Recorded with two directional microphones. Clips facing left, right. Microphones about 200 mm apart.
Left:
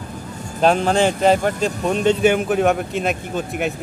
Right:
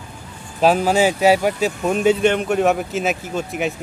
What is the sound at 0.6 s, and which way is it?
A man's voice, 5° right (ahead or behind).